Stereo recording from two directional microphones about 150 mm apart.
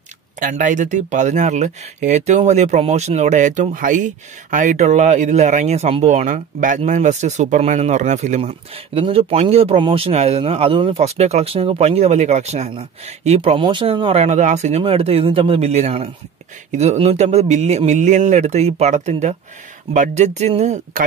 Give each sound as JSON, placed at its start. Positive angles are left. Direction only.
{"t": 0.4, "sound": "speech", "side_deg": -60}
{"t": 14.8, "sound": "speech", "side_deg": -40}